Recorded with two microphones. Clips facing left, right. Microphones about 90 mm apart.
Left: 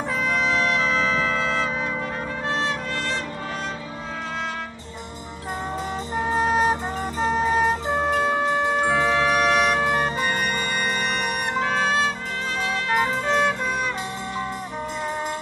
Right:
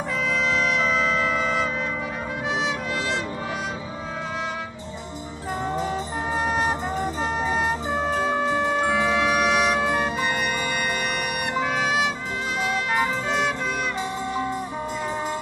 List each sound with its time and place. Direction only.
0.3 s wind instrument: centre (ahead or behind)
6.1 s music: centre (ahead or behind)